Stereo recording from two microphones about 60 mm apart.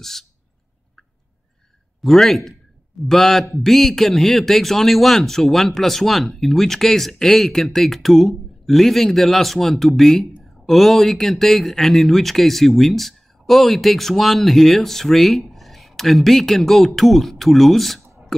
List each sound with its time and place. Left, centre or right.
0.0 s speech: centre
2.0 s speech: centre